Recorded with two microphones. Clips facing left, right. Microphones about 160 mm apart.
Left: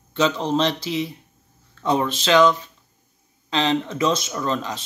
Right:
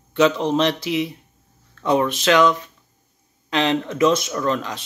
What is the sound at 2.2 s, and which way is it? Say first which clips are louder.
Speech: left 1 dB; 25° left (ahead or behind).